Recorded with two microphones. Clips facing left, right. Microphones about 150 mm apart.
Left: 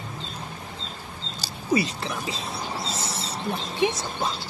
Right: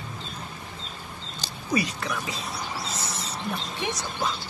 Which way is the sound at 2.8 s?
30° left (ahead or behind).